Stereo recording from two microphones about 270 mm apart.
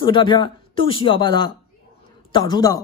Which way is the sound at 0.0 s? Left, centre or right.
Centre.